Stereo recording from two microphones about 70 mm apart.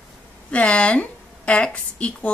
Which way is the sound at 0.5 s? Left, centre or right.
Centre.